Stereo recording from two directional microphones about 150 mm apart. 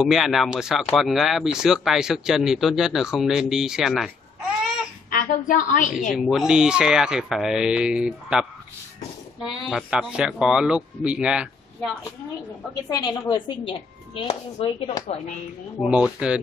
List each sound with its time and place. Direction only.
0.0 s speech: centre (ahead or behind)
5.1 s a woman's voice: 60° left (ahead or behind)
5.9 s speech: 5° right (ahead or behind)
9.7 s speech: 5° right (ahead or behind)
12.9 s a woman's voice: 30° left (ahead or behind)
15.9 s speech: 5° right (ahead or behind)